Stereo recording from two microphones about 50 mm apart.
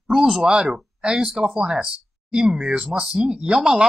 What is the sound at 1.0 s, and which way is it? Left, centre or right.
Speech, centre.